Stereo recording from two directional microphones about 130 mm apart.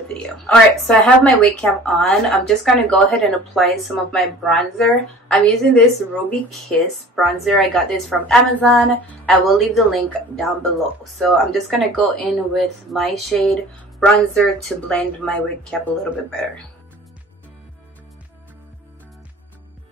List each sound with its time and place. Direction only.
0.1 s speech: 5° left (ahead or behind)
8.7 s speech: 10° left (ahead or behind)
9.5 s speech: centre (ahead or behind)